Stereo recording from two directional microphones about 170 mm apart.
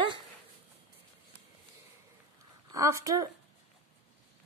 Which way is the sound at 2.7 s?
20° right (ahead or behind).